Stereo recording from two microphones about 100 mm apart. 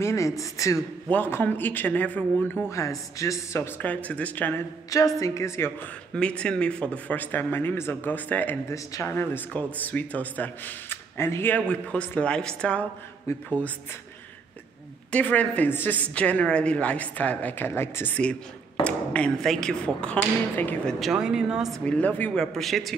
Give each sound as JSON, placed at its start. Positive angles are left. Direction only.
{"t": 0.0, "sound": "a woman's voice", "side_deg": 30}
{"t": 1.1, "sound": "speech", "side_deg": 20}
{"t": 2.7, "sound": "speech", "side_deg": 30}
{"t": 4.8, "sound": "a woman's voice", "side_deg": 35}
{"t": 6.1, "sound": "speech", "side_deg": 10}
{"t": 8.6, "sound": "speech", "side_deg": 30}
{"t": 13.3, "sound": "a woman's voice", "side_deg": 30}
{"t": 15.0, "sound": "speech", "side_deg": 15}
{"t": 20.8, "sound": "speech", "side_deg": 0}
{"t": 21.8, "sound": "speech", "side_deg": 15}
{"t": 22.4, "sound": "speech", "side_deg": 5}